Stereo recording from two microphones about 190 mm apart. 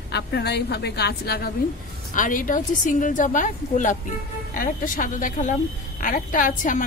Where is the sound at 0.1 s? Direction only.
60° left (ahead or behind).